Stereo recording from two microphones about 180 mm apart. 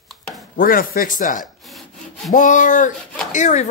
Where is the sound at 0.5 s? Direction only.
50° left (ahead or behind).